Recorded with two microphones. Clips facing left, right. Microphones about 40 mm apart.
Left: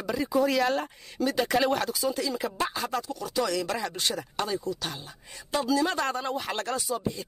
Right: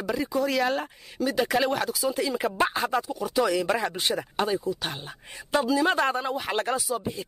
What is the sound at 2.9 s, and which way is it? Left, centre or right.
Speech, centre.